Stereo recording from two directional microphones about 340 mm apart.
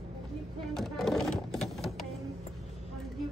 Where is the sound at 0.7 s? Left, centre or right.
Centre.